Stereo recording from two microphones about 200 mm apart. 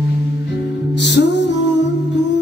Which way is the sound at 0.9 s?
60° left (ahead or behind).